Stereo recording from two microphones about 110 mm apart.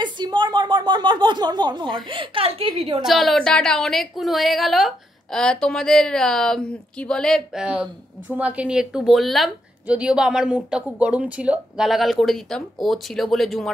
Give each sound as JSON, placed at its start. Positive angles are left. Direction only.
{"t": 0.0, "sound": "a woman's voice", "side_deg": -45}
{"t": 3.0, "sound": "speech", "side_deg": 0}
{"t": 7.6, "sound": "speech", "side_deg": -10}
{"t": 9.8, "sound": "speech", "side_deg": -10}